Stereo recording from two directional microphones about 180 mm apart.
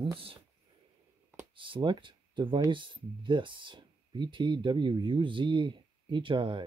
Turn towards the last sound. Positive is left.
turn(degrees=-25)  # may be behind; listen again after turning